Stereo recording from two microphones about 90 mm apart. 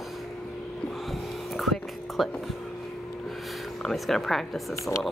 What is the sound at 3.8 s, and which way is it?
Speech, 5° left (ahead or behind).